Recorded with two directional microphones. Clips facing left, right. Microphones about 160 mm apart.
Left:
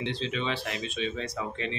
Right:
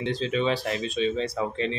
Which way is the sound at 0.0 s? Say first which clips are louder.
Right 6 dB; 45° right (ahead or behind).